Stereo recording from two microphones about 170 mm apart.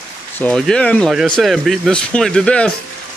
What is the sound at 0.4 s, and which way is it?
Speech, 5° left (ahead or behind).